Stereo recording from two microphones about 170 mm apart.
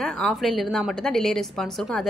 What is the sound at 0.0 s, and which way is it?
A woman's voice, 5° left (ahead or behind).